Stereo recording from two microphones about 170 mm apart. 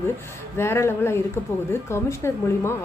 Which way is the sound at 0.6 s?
15° left (ahead or behind).